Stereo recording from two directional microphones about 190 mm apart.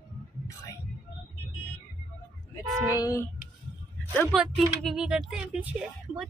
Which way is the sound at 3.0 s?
20° left (ahead or behind).